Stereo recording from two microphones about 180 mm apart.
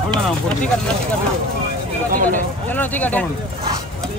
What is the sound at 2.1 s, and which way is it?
Speech, 50° right (ahead or behind).